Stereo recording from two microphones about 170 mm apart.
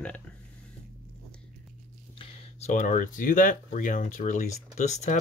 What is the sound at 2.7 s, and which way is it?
Speech, 50° left (ahead or behind).